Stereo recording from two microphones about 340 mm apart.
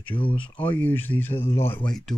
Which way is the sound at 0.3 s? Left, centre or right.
Centre.